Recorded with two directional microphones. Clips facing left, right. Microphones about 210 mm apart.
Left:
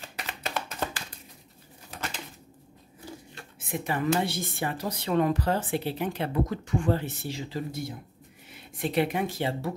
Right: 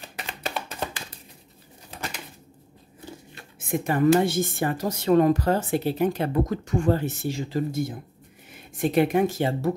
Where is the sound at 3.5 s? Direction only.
45° right (ahead or behind).